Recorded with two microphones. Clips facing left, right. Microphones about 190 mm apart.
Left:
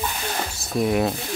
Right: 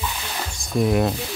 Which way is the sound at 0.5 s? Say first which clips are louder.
Right 2 dB; centre (ahead or behind).